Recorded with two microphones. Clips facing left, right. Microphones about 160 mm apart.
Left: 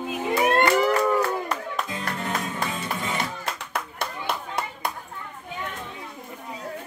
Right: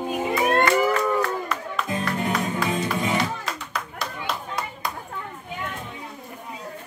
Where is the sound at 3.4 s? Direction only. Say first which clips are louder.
Even; 60° left (ahead or behind).